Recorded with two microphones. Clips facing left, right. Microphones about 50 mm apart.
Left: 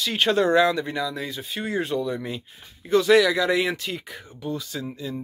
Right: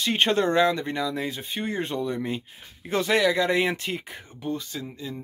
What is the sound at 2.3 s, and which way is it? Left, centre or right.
Speech, right.